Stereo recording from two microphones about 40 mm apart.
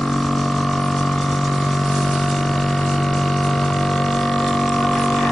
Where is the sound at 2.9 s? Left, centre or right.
Centre.